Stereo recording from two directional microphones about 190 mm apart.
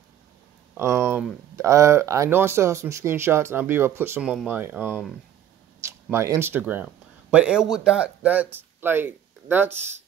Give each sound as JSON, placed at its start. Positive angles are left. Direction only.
{"t": 0.7, "sound": "speech", "side_deg": -15}